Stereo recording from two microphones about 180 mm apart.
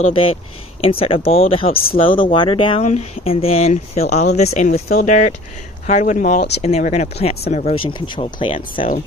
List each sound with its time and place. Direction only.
0.0 s speech: 30° left (ahead or behind)